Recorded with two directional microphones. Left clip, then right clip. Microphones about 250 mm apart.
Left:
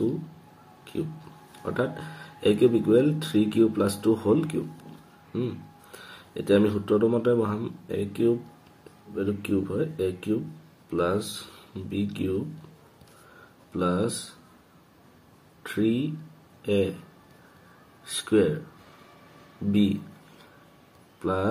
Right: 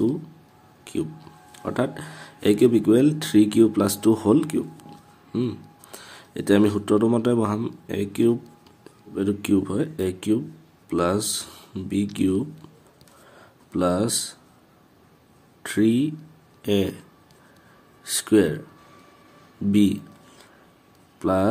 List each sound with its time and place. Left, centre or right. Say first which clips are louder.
1.6 s speech: right 3 dB; right
13.7 s speech: right 4 dB; right
15.6 s speech: right 5 dB; right
18.1 s speech: right 3 dB; right
21.2 s speech: right 6 dB; right